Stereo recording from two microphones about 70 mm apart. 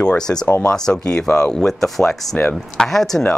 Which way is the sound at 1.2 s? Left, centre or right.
Left.